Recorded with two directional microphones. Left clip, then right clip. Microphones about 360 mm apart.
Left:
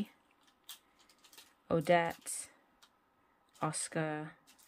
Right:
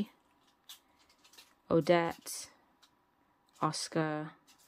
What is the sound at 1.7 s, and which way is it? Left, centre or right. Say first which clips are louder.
Speech: right 2 dB; centre.